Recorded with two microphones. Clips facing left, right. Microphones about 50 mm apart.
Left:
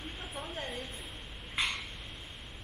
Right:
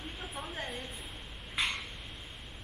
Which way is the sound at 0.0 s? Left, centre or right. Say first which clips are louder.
Even; centre.